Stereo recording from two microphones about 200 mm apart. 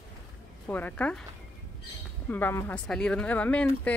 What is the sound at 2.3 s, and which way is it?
A woman's voice, 10° left (ahead or behind).